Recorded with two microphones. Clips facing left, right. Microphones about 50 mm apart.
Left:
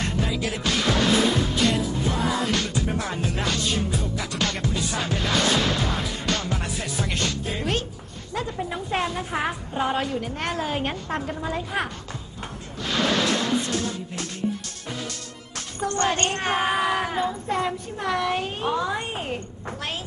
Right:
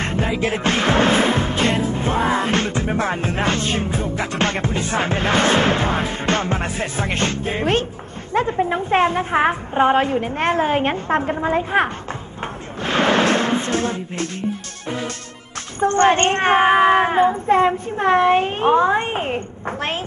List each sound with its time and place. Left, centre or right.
0.0 s music: right
8.3 s speech: right
12.8 s a sound: right
15.8 s speech: right